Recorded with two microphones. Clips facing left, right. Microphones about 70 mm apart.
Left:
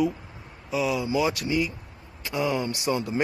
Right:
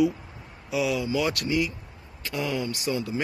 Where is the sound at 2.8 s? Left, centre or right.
Left.